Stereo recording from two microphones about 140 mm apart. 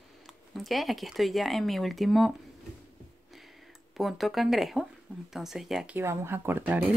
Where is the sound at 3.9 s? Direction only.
Centre (ahead or behind).